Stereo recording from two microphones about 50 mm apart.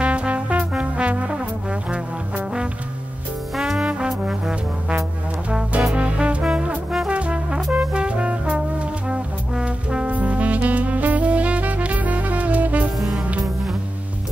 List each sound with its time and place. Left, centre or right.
0.0 s trombone: right
3.5 s trombone: centre
4.2 s brass instrument: centre
5.9 s music: right
7.1 s brass instrument: right
10.1 s music: right